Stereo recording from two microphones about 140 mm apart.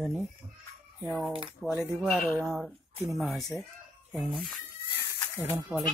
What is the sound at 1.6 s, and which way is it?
Speech, 5° right (ahead or behind).